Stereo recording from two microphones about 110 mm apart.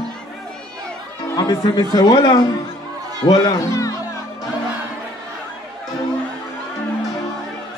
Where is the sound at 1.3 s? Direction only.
40° left (ahead or behind).